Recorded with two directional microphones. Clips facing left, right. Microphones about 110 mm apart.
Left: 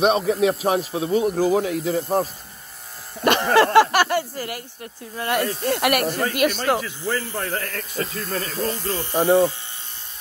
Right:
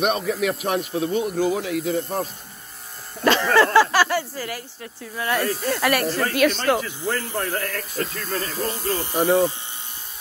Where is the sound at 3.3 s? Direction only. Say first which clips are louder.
Left 2 dB; 55° left (ahead or behind).